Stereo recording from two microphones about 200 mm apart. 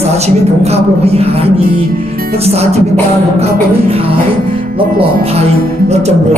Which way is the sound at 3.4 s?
30° right (ahead or behind).